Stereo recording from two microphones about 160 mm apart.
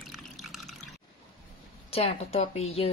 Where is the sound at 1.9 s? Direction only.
40° left (ahead or behind).